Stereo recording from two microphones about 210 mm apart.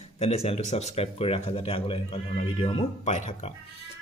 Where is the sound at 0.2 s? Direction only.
30° left (ahead or behind).